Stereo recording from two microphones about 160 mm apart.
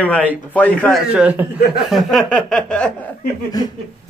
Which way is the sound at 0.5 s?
10° left (ahead or behind).